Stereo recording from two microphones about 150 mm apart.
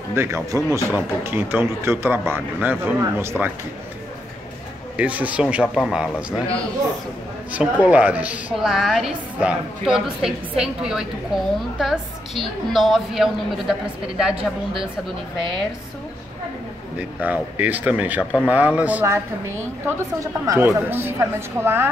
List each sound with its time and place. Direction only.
0.1 s speech: 20° right (ahead or behind)
4.9 s speech: 10° right (ahead or behind)
7.5 s a woman's voice: 10° right (ahead or behind)
17.2 s speech: 10° right (ahead or behind)